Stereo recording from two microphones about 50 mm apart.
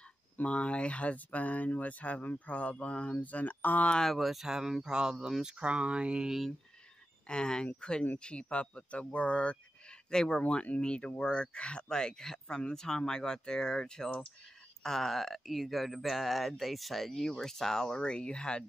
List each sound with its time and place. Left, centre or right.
0.4 s speech: left
3.9 s speech: centre
4.2 s speech: centre
5.6 s speech: right
6.2 s speech: centre
7.2 s speech: centre
10.4 s speech: left